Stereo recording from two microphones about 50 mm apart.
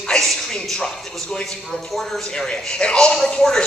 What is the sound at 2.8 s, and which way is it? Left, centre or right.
Speech, centre.